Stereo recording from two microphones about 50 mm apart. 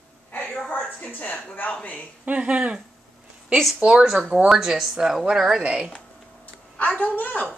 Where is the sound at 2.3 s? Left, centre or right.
Right.